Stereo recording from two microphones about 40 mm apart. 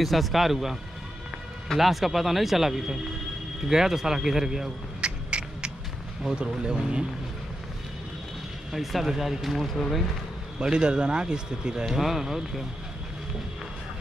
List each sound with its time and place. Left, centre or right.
0.0 s speech: centre
1.8 s speech: centre
5.0 s a sound: right
6.3 s speech: right
9.2 s speech: centre
10.6 s speech: centre